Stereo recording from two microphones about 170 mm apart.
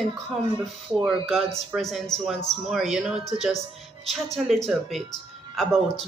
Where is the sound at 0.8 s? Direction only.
5° right (ahead or behind).